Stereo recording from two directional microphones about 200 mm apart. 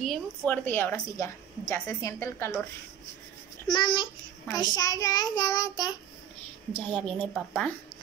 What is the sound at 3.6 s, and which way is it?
Child singing, 20° left (ahead or behind).